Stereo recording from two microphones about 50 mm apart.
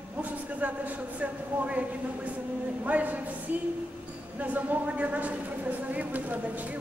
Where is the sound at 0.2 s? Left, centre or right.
Right.